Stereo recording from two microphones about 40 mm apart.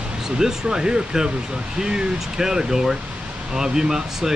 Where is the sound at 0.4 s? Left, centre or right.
Centre.